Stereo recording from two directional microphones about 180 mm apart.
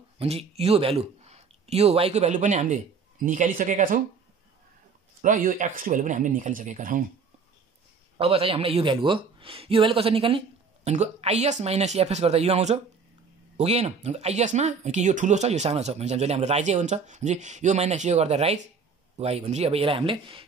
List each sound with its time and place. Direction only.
0.2 s speech: 35° right (ahead or behind)
5.2 s speech: 45° right (ahead or behind)
8.2 s speech: 30° right (ahead or behind)